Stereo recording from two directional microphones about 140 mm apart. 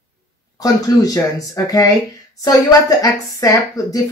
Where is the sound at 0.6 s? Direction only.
25° left (ahead or behind).